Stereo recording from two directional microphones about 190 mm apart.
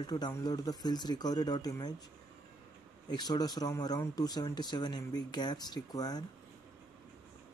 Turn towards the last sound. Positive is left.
turn(degrees=20)  # may be behind; listen again after turning